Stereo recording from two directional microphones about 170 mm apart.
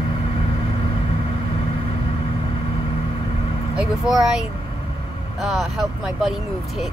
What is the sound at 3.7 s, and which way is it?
Speech, 5° right (ahead or behind).